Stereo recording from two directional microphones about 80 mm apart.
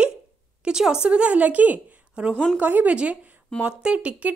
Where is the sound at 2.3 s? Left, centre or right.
Centre.